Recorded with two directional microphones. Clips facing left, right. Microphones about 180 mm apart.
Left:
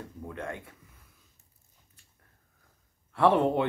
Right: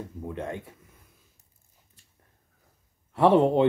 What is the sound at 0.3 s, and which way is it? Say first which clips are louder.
Speech: right 4 dB; 20° right (ahead or behind).